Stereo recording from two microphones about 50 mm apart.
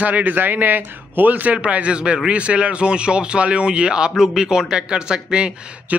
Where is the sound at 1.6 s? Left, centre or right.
Right.